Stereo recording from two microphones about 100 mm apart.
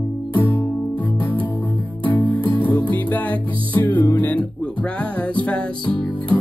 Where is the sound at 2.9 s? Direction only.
15° left (ahead or behind).